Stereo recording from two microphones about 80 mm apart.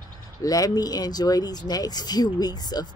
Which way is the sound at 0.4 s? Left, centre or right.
Left.